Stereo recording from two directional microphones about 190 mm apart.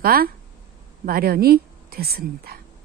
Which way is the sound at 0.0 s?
50° right (ahead or behind).